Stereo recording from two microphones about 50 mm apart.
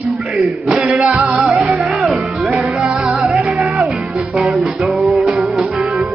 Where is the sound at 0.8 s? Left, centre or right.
Right.